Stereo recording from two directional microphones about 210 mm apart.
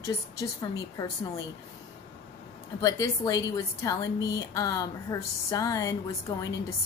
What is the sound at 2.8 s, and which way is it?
A woman's voice, 15° left (ahead or behind).